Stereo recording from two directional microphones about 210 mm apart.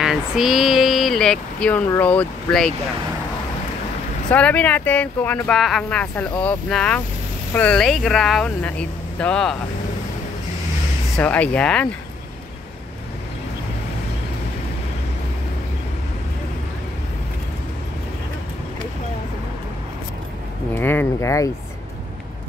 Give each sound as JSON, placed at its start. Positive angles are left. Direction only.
{"t": 0.0, "sound": "speech", "side_deg": 0}
{"t": 4.3, "sound": "speech", "side_deg": 5}
{"t": 11.1, "sound": "speech", "side_deg": 5}
{"t": 20.7, "sound": "speech", "side_deg": 10}